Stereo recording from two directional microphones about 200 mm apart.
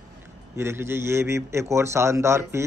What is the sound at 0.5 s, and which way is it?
Speech, 15° right (ahead or behind).